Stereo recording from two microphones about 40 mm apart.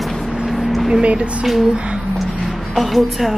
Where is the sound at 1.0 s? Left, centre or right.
Right.